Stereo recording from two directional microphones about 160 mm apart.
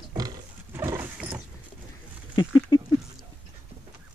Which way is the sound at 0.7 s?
15° right (ahead or behind).